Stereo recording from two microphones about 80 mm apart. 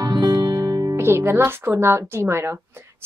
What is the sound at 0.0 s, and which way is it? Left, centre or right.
Music, right.